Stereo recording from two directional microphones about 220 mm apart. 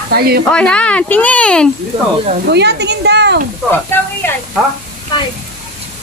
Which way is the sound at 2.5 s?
50° right (ahead or behind).